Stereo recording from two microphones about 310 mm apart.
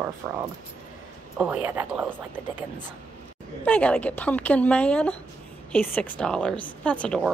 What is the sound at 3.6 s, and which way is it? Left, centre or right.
Speech, centre.